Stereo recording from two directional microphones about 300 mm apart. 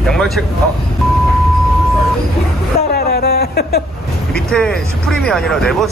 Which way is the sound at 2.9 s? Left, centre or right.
Left.